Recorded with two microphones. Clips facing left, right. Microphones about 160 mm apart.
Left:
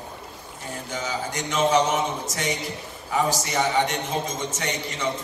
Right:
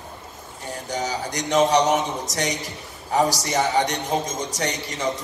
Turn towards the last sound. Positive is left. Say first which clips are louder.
# right 2 dB
turn(degrees=-40)  # may be behind; listen again after turning